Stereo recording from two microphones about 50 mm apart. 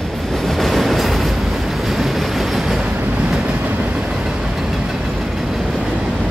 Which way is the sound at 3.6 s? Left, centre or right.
Right.